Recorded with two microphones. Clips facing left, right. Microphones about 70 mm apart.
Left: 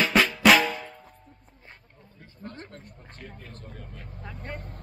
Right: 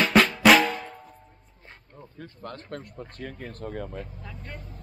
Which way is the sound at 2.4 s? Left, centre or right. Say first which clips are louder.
Right 3 dB; right.